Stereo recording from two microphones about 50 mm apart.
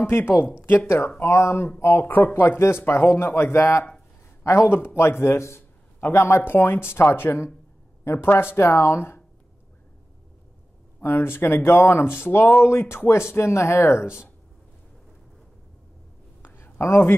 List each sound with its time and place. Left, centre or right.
0.0 s speech: left
0.6 s speech: left
0.8 s speech: left
2.0 s speech: left
3.5 s speech: left
4.4 s a man's voice: left
5.9 s a man's voice: left
11.1 s speech: left
16.4 s a sound: left